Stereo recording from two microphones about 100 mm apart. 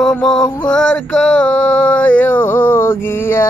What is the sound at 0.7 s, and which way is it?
Male singing, 10° left (ahead or behind).